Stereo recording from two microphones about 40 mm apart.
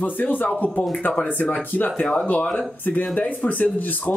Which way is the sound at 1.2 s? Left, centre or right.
Left.